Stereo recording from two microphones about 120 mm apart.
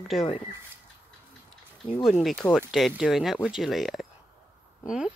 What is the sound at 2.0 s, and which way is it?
Speech, centre (ahead or behind).